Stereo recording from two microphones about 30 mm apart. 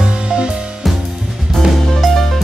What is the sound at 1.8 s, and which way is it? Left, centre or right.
Music, centre.